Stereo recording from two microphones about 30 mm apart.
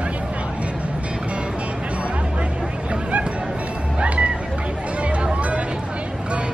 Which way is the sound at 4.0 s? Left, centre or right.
Right.